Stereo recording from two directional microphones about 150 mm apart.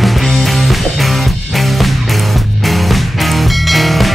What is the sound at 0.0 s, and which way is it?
Music, centre (ahead or behind).